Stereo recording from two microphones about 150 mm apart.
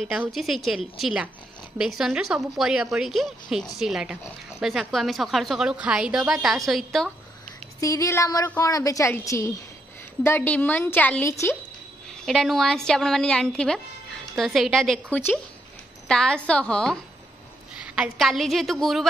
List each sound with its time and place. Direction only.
0.0 s a woman's voice: centre (ahead or behind)
7.8 s a woman's voice: 20° left (ahead or behind)
12.3 s a woman's voice: centre (ahead or behind)